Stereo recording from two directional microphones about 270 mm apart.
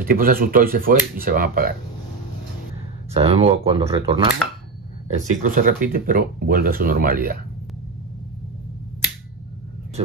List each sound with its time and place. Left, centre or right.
0.0 s speech: right
3.1 s speech: right
5.1 s speech: right